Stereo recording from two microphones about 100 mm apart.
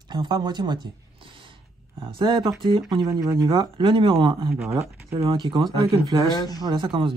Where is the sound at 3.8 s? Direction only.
60° right (ahead or behind).